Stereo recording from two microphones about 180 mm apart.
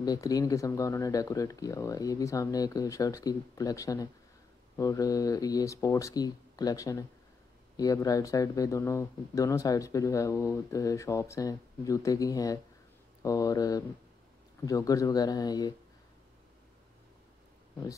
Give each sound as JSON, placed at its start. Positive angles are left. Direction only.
{"t": 0.0, "sound": "speech", "side_deg": 20}